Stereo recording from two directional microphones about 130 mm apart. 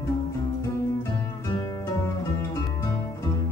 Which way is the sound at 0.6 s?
25° left (ahead or behind).